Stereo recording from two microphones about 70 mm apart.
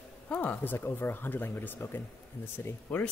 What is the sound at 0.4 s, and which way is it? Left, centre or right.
Speech, left.